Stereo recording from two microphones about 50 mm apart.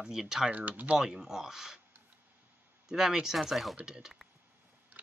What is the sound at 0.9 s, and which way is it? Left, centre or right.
Speech, centre.